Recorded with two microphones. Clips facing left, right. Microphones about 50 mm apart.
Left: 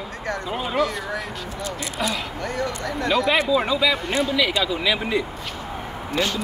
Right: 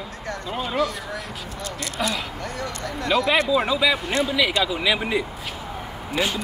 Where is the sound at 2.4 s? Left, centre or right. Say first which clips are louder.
Left 4 dB; left.